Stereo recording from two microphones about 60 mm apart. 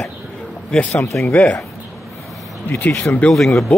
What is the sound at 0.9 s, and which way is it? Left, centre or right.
Speech, left.